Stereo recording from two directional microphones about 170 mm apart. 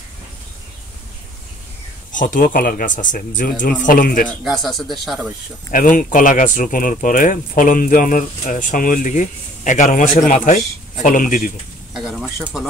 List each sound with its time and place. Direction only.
2.1 s speech: 50° left (ahead or behind)
4.3 s speech: centre (ahead or behind)
5.7 s speech: 55° left (ahead or behind)
11.9 s a sound: 5° right (ahead or behind)